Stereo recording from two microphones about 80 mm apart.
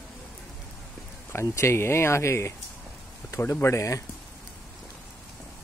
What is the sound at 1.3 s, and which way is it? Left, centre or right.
Speech, left.